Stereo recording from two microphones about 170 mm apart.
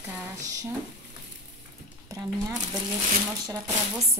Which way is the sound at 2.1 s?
20° right (ahead or behind).